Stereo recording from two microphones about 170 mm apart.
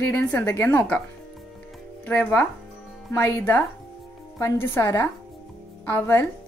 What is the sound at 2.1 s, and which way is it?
A woman's voice, 10° left (ahead or behind).